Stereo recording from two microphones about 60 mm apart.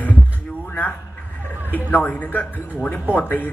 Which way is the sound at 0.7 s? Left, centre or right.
Left.